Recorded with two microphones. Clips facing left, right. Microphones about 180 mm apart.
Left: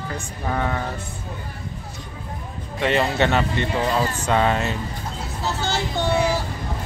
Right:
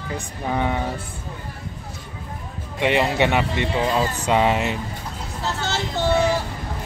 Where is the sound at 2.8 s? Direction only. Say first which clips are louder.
Right 1 dB; 15° right (ahead or behind).